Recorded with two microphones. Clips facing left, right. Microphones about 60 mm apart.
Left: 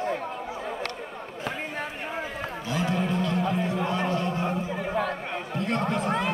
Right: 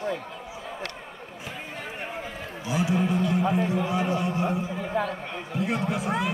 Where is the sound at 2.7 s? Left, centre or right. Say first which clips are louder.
Right 2 dB; centre.